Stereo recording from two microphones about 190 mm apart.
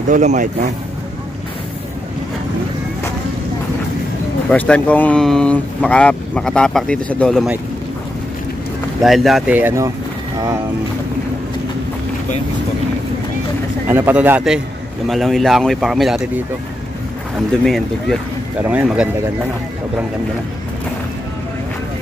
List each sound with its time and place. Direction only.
0.1 s speech: 40° right (ahead or behind)
4.5 s speech: 5° left (ahead or behind)
9.0 s speech: centre (ahead or behind)
13.8 s speech: 10° right (ahead or behind)
17.6 s speech: centre (ahead or behind)